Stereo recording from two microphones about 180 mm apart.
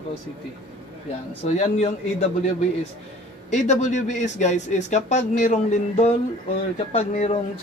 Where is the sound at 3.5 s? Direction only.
40° left (ahead or behind).